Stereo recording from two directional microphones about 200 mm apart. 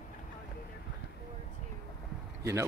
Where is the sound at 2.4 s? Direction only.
15° right (ahead or behind).